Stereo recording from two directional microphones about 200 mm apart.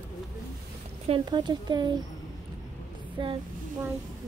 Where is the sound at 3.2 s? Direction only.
25° right (ahead or behind).